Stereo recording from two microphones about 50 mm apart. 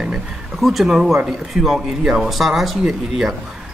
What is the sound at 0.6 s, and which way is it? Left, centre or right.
A man's voice, centre.